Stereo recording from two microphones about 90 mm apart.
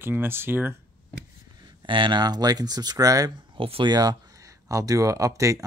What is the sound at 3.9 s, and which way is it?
Speech, 50° right (ahead or behind).